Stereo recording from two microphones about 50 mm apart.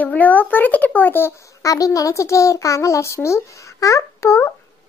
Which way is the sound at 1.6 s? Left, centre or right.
Left.